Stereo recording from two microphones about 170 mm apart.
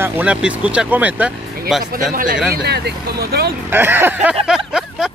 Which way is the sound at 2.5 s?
75° right (ahead or behind).